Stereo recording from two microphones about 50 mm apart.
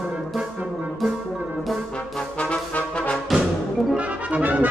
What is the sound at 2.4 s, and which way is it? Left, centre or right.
Brass instrument, left.